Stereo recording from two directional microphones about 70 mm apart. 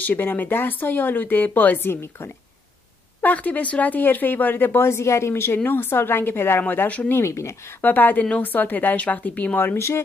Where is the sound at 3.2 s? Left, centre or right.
Left.